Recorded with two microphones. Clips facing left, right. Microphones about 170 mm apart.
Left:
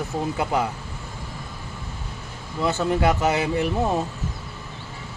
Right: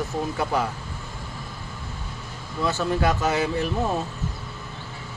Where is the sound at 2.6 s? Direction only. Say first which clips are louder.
Left 2 dB; 20° left (ahead or behind).